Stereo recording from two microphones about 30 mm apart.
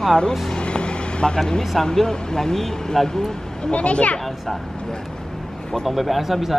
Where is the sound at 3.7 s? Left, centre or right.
Left.